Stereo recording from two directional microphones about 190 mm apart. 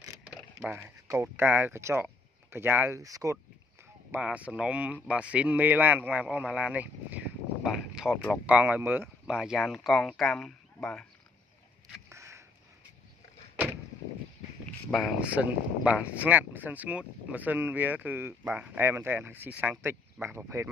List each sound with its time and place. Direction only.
0.2 s speech: 5° right (ahead or behind)
4.1 s speech: 5° right (ahead or behind)
8.5 s speech: 10° right (ahead or behind)
12.1 s a sound: 15° right (ahead or behind)
14.9 s speech: 5° right (ahead or behind)